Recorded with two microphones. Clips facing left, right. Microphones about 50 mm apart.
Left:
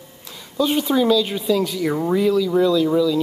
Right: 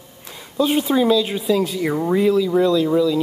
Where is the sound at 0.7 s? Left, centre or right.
Centre.